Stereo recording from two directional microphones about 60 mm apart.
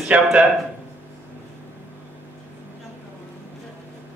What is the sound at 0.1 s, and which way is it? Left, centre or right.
Speech, right.